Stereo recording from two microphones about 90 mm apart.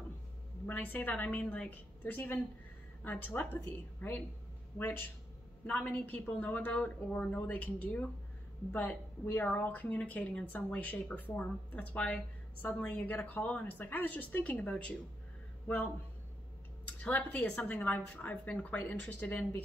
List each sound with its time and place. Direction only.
0.7 s speech: 20° left (ahead or behind)